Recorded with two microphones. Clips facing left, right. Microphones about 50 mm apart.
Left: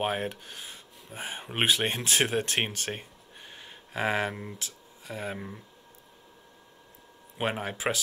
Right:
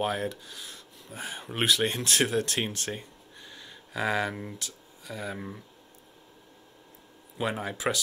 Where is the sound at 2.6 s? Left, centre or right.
Left.